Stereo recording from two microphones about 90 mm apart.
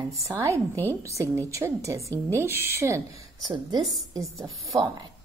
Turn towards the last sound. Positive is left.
turn(degrees=-45)  # may be behind; listen again after turning